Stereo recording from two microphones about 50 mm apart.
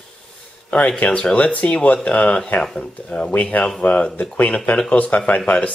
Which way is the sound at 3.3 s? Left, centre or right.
Left.